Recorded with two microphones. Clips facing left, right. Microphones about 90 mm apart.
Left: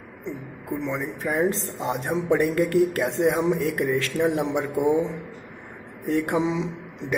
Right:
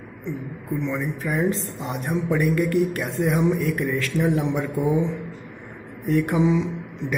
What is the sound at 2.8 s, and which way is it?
A man's voice, 20° left (ahead or behind).